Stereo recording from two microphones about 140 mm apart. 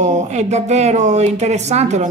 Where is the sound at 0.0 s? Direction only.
60° right (ahead or behind).